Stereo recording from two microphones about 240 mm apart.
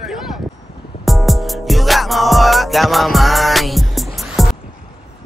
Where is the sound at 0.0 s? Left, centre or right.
Centre.